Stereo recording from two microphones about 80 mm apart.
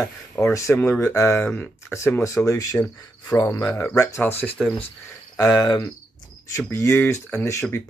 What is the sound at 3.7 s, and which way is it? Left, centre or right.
Speech, left.